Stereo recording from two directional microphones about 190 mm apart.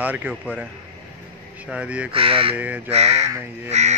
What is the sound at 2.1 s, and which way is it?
Speech, 30° right (ahead or behind).